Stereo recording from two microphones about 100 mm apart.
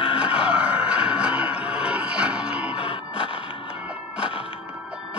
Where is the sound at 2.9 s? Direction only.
70° left (ahead or behind).